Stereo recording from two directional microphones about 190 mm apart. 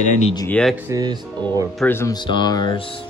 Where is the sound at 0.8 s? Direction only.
20° right (ahead or behind).